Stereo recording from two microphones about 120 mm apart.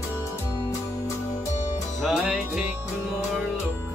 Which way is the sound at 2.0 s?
5° left (ahead or behind).